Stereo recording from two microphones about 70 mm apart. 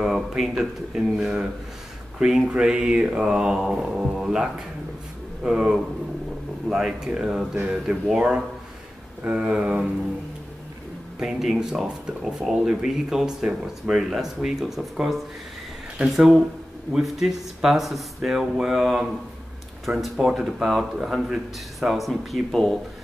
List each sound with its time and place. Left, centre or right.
0.0 s speech: centre
7.5 s speech: right
11.1 s speech: centre